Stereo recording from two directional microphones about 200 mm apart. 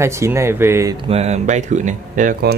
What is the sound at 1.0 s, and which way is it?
Speech, 30° right (ahead or behind).